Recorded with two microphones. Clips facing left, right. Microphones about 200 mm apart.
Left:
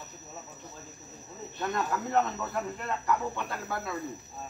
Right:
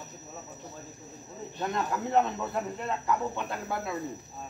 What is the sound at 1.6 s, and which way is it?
Speech, 20° right (ahead or behind).